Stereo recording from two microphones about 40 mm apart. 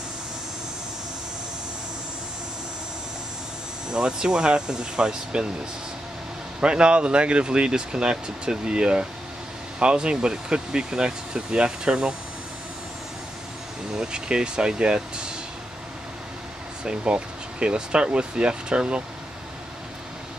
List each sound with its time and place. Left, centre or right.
3.9 s speech: right
6.6 s speech: right
13.9 s speech: right
16.8 s speech: right